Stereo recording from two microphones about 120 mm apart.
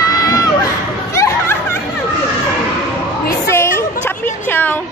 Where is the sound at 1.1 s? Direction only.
20° left (ahead or behind).